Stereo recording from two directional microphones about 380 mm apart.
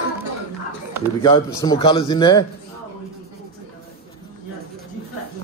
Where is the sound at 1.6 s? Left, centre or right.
Centre.